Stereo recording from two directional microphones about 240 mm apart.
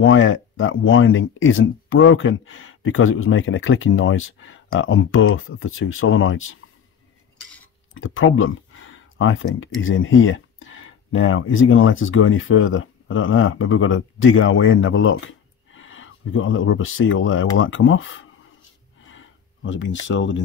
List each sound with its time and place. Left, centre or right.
0.0 s speech: left
7.9 s speech: left
19.0 s a sound: left